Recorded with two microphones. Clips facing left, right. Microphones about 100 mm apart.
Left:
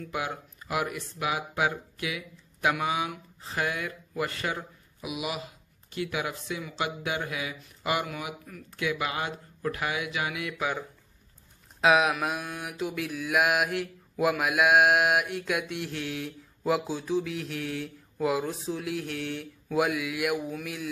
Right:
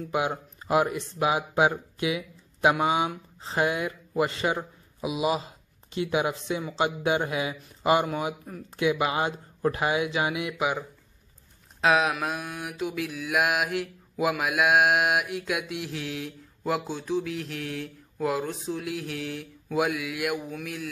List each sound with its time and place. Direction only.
0.0 s speech: 25° right (ahead or behind)
11.8 s mantra: centre (ahead or behind)